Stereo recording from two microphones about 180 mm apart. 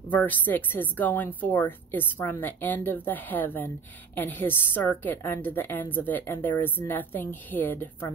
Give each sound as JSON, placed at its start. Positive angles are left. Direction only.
{"t": 0.1, "sound": "a woman's voice", "side_deg": 10}